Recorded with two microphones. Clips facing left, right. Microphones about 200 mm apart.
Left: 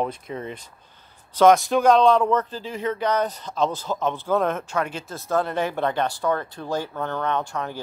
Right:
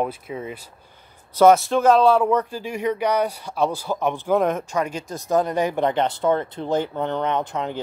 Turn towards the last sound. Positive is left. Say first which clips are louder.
# right 2 dB
turn(degrees=-20)  # may be behind; listen again after turning